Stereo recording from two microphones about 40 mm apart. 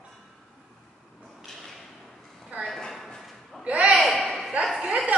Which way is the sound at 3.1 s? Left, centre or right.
Centre.